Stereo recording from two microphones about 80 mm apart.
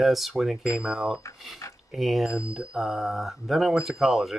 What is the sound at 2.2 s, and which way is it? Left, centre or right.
Speech, left.